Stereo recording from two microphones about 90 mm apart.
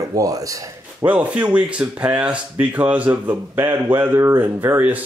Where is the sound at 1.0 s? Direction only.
20° right (ahead or behind).